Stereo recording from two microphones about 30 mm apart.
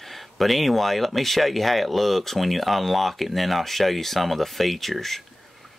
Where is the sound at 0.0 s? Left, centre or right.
Centre.